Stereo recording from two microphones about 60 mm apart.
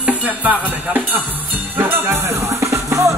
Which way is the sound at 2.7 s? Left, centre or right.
Right.